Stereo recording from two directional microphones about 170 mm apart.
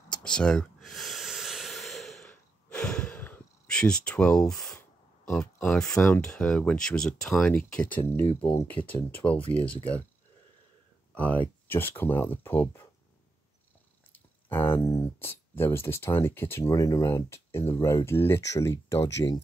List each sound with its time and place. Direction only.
0.1 s a sound: 5° left (ahead or behind)
5.3 s speech: centre (ahead or behind)
11.1 s speech: 10° left (ahead or behind)
14.1 s a sound: 10° left (ahead or behind)
15.1 s speech: 10° left (ahead or behind)
19.0 s speech: 90° left